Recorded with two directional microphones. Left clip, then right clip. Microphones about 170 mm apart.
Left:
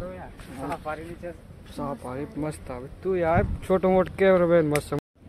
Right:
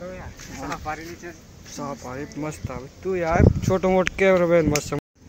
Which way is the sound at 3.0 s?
15° left (ahead or behind).